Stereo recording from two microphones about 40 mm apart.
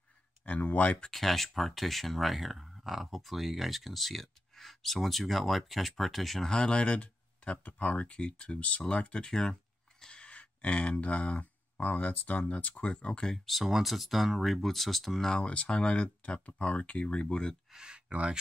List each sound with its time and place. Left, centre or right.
0.5 s speech: left
1.1 s speech: centre
6.4 s speech: centre
7.5 s speech: left
9.3 s speech: centre
13.5 s speech: centre
15.4 s speech: left
17.7 s speech: right